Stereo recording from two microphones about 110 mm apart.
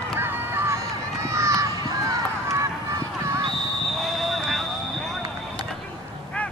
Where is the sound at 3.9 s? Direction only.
Centre (ahead or behind).